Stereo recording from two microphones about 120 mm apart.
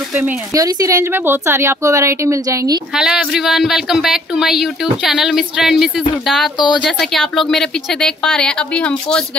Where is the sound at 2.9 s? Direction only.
5° right (ahead or behind).